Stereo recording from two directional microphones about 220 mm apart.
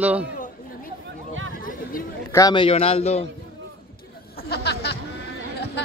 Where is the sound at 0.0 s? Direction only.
5° right (ahead or behind).